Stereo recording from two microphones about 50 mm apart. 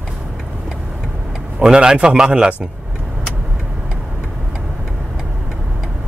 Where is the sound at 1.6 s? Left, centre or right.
Centre.